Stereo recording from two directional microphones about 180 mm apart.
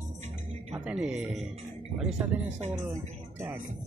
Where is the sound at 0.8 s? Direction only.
5° right (ahead or behind).